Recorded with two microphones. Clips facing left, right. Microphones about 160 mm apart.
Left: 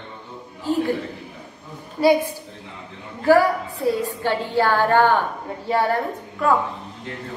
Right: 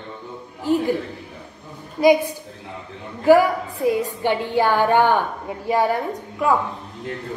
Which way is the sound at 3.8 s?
15° right (ahead or behind).